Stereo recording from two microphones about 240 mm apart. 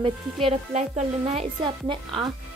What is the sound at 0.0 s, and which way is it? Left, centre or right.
Speech, right.